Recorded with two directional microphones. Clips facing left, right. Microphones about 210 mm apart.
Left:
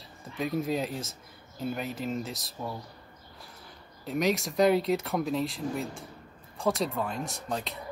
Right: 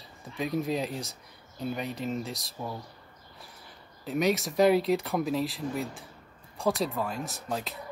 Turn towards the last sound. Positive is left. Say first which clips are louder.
# even
turn(degrees=0)  # may be behind; listen again after turning